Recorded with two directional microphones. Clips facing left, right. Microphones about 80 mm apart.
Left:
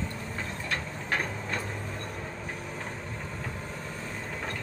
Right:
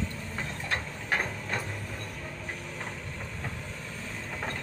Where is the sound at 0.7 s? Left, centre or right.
Centre.